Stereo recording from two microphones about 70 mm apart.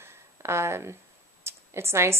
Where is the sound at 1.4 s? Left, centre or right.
Right.